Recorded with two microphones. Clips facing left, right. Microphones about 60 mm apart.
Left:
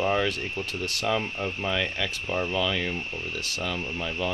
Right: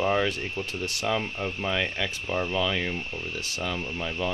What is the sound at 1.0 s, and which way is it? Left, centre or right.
Speech, centre.